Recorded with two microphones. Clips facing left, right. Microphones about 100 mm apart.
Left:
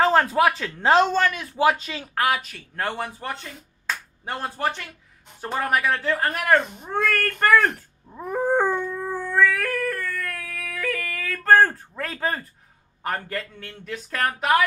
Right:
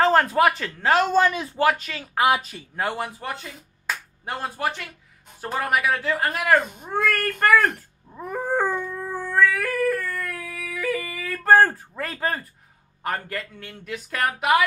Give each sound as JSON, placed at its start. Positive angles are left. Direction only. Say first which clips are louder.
{"t": 0.0, "sound": "a man's voice", "louder": "even", "side_deg": 0}
{"t": 0.7, "sound": "speech", "louder": "left 4 dB", "side_deg": 25}
{"t": 1.1, "sound": "a woman's voice", "louder": "right 3 dB", "side_deg": -20}
{"t": 1.6, "sound": "speech", "louder": "left 1 dB", "side_deg": 15}
{"t": 2.1, "sound": "a woman's voice", "louder": "right 3 dB", "side_deg": -20}
{"t": 2.7, "sound": "speech", "louder": "right 1 dB", "side_deg": -5}
{"t": 8.4, "sound": "howl", "louder": "left 3 dB", "side_deg": 15}
{"t": 8.6, "sound": "howl", "louder": "left 2 dB", "side_deg": -5}
{"t": 9.1, "sound": "yodeling", "louder": "even", "side_deg": -5}
{"t": 13.0, "sound": "speech", "louder": "even", "side_deg": 0}